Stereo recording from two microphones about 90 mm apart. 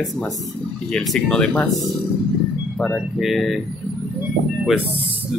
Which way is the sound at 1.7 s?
Centre (ahead or behind).